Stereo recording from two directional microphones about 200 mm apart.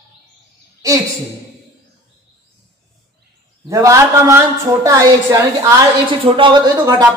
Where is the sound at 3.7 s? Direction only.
15° right (ahead or behind).